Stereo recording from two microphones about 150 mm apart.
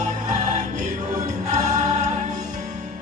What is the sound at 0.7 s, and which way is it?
Choir, 60° right (ahead or behind).